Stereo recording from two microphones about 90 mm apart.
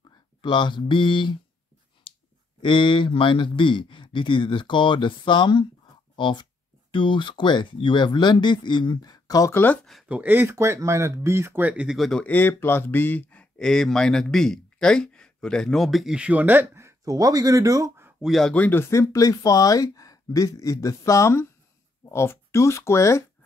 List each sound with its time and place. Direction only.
0.4 s speech: 60° left (ahead or behind)
2.1 s clicking: 90° left
2.6 s speech: 65° left (ahead or behind); by 9.5 s 45° left (ahead or behind)
9.5 s speech: 25° left (ahead or behind)
10.0 s speech: 15° right (ahead or behind)
11.6 s speech: 10° right (ahead or behind)
12.0 s speech: 5° left (ahead or behind)
12.3 s speech: 20° left (ahead or behind); by 16.2 s centre (ahead or behind)
16.2 s speech: 15° right (ahead or behind); by 17.9 s 40° right (ahead or behind)
18.2 s speech: centre (ahead or behind)
18.5 s speech: 20° left (ahead or behind)